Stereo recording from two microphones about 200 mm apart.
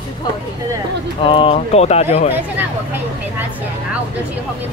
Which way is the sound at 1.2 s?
25° left (ahead or behind).